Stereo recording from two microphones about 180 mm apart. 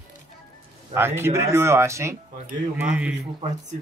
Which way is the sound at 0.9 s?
15° right (ahead or behind).